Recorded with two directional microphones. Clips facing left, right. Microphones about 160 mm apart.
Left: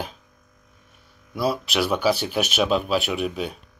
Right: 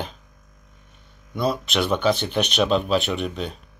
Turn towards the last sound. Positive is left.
turn(degrees=5)  # may be behind; listen again after turning